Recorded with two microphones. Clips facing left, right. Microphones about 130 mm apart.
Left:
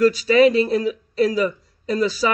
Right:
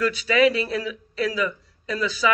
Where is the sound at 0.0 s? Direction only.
35° left (ahead or behind).